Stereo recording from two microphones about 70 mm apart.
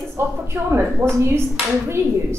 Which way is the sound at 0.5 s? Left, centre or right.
Right.